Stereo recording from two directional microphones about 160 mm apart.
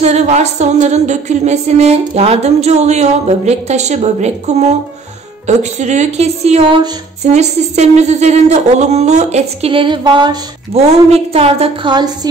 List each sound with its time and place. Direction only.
0.0 s music: 45° right (ahead or behind); by 10.4 s 25° right (ahead or behind)
10.7 s a woman's voice: 40° right (ahead or behind)